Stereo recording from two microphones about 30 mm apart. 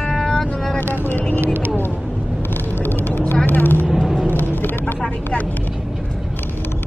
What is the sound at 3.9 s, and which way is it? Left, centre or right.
Vehicle, centre.